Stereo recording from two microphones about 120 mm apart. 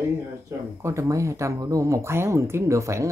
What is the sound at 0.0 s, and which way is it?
Speech, 25° right (ahead or behind).